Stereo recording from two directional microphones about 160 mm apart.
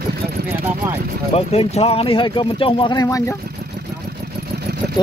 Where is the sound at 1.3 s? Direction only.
40° left (ahead or behind); by 3.2 s 20° left (ahead or behind).